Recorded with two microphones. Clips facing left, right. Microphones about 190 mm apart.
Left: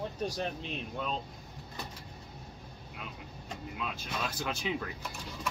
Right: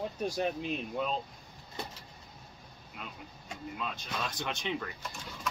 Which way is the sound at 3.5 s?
5° left (ahead or behind).